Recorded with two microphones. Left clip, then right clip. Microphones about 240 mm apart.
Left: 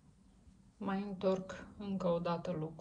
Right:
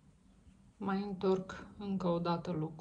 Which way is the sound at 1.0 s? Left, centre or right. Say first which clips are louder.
Right 1 dB; right.